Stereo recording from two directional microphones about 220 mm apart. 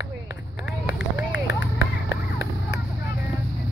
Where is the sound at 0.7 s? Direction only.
5° right (ahead or behind).